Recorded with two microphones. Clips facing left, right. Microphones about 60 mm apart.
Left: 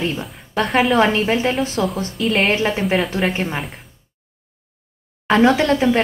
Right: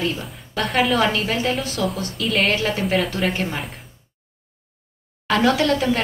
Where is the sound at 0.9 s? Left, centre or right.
Left.